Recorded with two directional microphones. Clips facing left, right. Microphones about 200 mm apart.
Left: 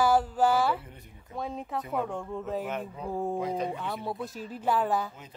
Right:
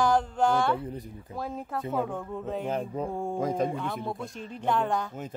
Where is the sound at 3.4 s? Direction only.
45° right (ahead or behind).